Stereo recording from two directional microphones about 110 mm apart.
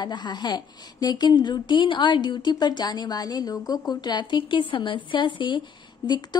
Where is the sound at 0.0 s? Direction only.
40° left (ahead or behind).